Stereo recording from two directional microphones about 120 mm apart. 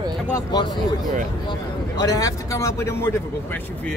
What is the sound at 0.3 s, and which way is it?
Speech, 35° left (ahead or behind).